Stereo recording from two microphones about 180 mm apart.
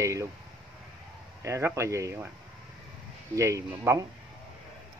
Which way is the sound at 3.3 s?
15° right (ahead or behind).